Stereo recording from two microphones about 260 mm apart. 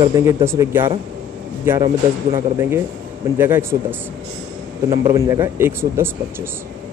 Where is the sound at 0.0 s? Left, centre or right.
Centre.